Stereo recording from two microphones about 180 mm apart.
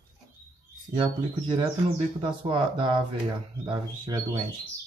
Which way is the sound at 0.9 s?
25° right (ahead or behind).